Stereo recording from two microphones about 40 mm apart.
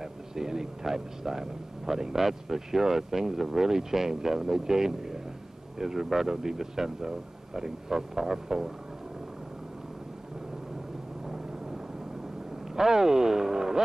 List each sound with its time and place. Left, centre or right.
0.0 s speech: centre
11.2 s vehicle: centre
12.7 s speech: centre